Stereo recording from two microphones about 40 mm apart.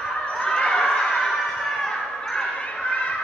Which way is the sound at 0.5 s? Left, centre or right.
Centre.